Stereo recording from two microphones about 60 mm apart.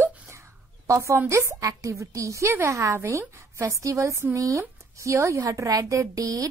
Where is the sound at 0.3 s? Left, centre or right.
Right.